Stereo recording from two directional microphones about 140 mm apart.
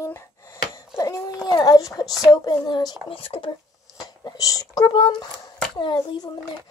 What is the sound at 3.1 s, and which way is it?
Speech, 40° left (ahead or behind).